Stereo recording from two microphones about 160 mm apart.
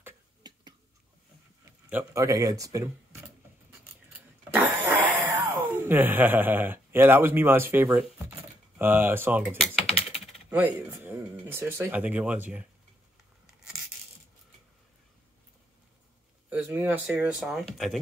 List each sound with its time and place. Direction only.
0.4 s a sound: 25° right (ahead or behind)
1.9 s speech: 15° right (ahead or behind)
4.6 s a sound: 10° right (ahead or behind)
8.7 s speech: 10° right (ahead or behind)
9.6 s typing: 40° left (ahead or behind)
10.9 s speech: 15° right (ahead or behind)
16.4 s speech: 10° right (ahead or behind)